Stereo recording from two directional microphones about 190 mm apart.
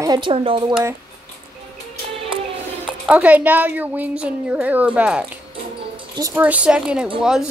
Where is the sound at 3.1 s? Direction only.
10° right (ahead or behind).